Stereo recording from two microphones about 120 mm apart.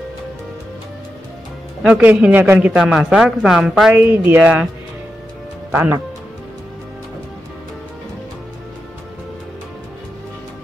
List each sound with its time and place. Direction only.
1.8 s a man's voice: 10° right (ahead or behind)
5.7 s speech: 15° right (ahead or behind)